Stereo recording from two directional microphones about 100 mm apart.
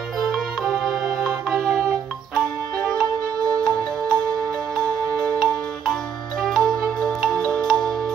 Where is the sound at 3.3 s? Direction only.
35° right (ahead or behind).